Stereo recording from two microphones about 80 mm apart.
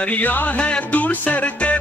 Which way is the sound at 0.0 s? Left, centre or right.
Left.